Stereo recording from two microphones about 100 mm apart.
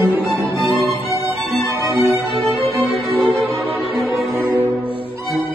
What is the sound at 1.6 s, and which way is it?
Music, 30° right (ahead or behind).